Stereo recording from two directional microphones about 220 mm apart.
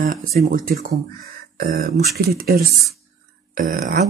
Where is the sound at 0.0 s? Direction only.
40° right (ahead or behind).